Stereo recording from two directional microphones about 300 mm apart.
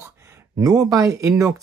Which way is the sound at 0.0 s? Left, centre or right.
Centre.